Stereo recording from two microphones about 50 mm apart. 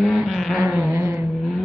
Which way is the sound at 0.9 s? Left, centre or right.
Right.